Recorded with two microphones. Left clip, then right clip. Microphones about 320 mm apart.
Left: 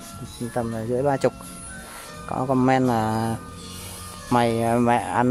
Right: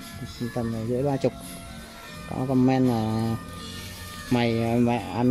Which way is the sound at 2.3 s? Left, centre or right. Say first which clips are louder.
Left 4 dB; left.